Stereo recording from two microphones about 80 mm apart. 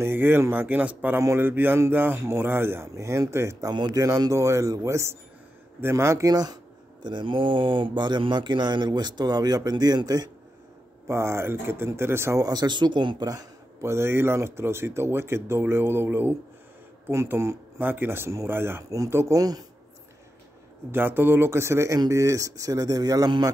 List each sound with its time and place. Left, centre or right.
0.0 s a man's voice: right
2.9 s speech: right
11.1 s speech: right
12.4 s speech: right
13.2 s speech: right
13.7 s speech: right
18.9 s speech: right
19.1 s speech: right
20.9 s speech: right